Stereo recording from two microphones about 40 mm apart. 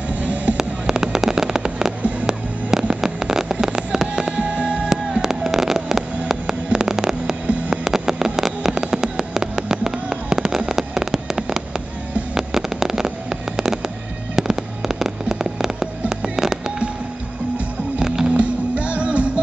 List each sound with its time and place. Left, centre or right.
0.1 s a sound: right
0.6 s fireworks: centre
2.2 s a sound: centre
3.6 s fireworks: centre
4.4 s music: right
5.5 s a sound: centre
7.8 s vehicle: centre
8.7 s fireworks: centre
17.9 s music: centre
18.3 s music: right